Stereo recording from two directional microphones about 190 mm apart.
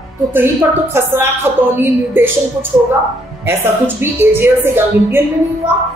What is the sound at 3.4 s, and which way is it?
A woman's voice, 10° right (ahead or behind).